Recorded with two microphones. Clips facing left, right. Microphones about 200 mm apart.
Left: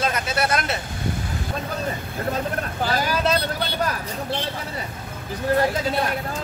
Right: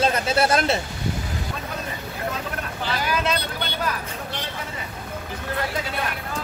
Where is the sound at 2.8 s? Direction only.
40° left (ahead or behind).